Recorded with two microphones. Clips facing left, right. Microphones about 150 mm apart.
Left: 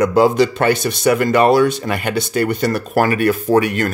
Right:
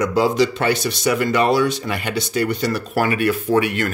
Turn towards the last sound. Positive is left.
turn(degrees=40)  # may be behind; listen again after turning